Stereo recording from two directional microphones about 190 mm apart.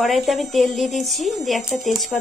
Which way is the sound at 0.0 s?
Centre (ahead or behind).